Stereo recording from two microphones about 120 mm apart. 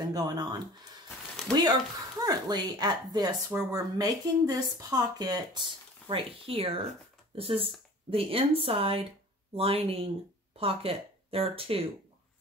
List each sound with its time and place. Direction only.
0.1 s a woman's voice: 35° right (ahead or behind)
6.0 s a woman's voice: 50° right (ahead or behind)